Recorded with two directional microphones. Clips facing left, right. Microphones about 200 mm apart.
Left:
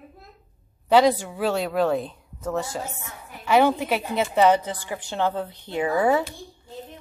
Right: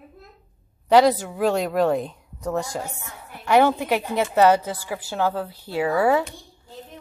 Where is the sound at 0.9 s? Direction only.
10° right (ahead or behind).